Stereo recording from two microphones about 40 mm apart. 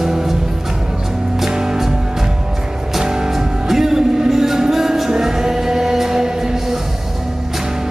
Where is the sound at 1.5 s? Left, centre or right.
Centre.